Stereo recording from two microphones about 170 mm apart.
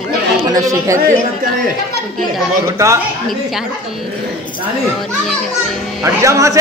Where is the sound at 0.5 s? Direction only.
20° right (ahead or behind).